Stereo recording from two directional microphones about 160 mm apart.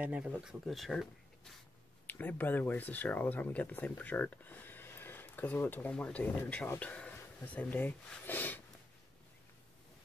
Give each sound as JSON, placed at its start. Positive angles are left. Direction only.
{"t": 0.0, "sound": "speech", "side_deg": -10}
{"t": 2.0, "sound": "speech", "side_deg": 10}